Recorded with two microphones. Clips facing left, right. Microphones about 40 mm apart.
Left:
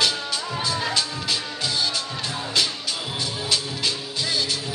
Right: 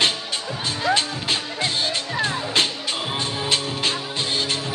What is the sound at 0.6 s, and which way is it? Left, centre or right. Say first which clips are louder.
Music: right 5 dB; right.